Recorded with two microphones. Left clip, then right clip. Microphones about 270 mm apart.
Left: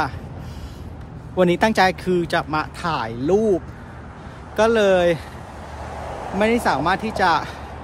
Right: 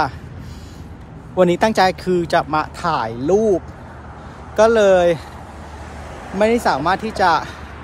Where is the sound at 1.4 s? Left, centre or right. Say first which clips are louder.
Right 2 dB; centre.